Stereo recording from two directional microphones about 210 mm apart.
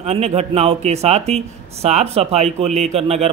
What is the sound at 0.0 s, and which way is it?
A man's voice, 30° right (ahead or behind).